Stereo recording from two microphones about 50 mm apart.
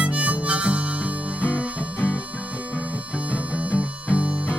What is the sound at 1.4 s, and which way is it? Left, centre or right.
Music, right.